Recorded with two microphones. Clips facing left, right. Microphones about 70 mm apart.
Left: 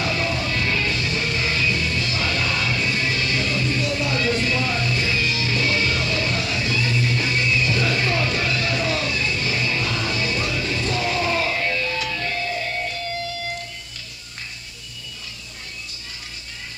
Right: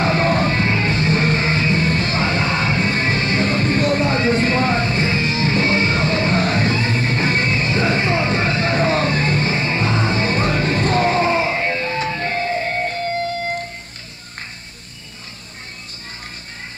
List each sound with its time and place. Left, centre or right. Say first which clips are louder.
0.0 s music: right 7 dB; right